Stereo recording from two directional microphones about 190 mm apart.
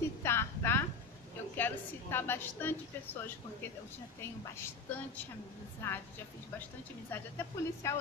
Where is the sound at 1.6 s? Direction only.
10° left (ahead or behind).